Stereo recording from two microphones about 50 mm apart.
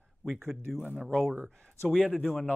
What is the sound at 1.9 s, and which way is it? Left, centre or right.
Speech, centre.